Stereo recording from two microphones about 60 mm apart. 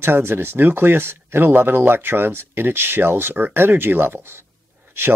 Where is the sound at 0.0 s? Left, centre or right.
Right.